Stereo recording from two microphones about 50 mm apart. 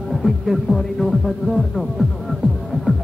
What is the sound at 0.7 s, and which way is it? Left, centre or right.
Speech, centre.